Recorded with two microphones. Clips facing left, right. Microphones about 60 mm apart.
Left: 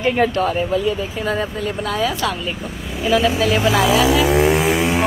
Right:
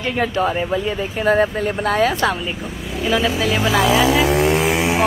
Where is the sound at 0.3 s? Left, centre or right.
Centre.